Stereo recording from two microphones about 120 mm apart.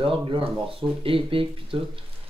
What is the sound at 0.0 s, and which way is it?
Speech, 45° right (ahead or behind).